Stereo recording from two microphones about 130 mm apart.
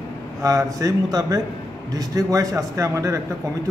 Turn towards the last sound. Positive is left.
turn(degrees=-25)  # may be behind; listen again after turning